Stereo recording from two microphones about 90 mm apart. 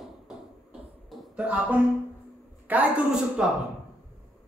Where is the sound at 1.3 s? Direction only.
15° right (ahead or behind).